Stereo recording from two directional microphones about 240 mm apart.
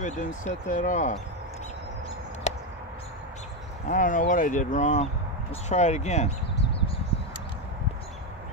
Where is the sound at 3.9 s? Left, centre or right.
Left.